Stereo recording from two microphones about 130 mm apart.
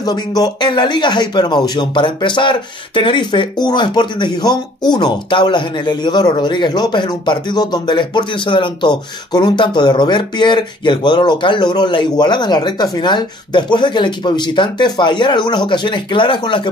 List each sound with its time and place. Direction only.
0.0 s speech: 30° left (ahead or behind)